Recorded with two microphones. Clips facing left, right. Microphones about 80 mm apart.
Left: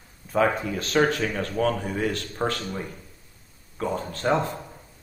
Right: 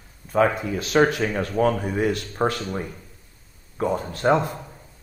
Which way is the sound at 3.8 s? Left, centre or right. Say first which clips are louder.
Right 4 dB; centre.